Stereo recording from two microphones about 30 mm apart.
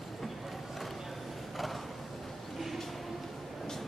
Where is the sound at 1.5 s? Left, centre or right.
Centre.